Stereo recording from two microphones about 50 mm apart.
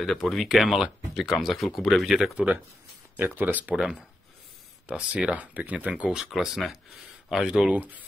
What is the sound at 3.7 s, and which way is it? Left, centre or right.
Speech, centre.